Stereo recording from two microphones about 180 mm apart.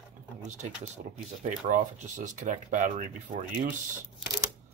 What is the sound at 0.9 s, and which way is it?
Speech, 45° right (ahead or behind).